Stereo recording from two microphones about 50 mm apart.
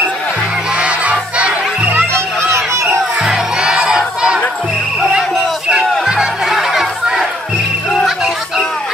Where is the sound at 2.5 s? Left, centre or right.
Right.